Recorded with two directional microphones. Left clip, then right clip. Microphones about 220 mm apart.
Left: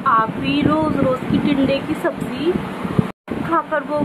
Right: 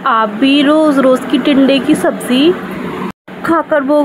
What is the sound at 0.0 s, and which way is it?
A woman's voice, 30° right (ahead or behind).